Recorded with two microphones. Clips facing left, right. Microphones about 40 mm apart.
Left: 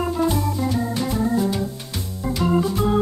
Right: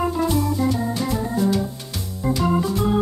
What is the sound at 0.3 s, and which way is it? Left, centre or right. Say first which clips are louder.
Organ: right 2 dB; centre.